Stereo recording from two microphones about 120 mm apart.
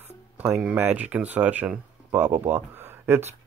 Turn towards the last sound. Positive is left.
turn(degrees=-20)  # may be behind; listen again after turning